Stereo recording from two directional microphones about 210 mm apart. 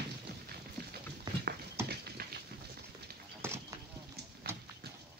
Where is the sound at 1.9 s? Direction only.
50° right (ahead or behind).